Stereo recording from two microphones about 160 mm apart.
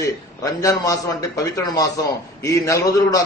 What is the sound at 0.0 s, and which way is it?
A man's voice, 20° left (ahead or behind).